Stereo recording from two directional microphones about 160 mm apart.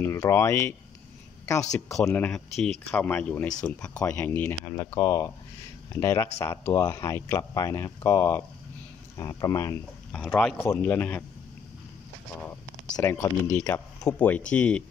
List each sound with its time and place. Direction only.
0.0 s speech: 15° left (ahead or behind)
1.6 s speech: 5° left (ahead or behind); by 9.8 s 20° left (ahead or behind)
10.1 s speech: 5° left (ahead or behind)
12.9 s speech: 20° left (ahead or behind)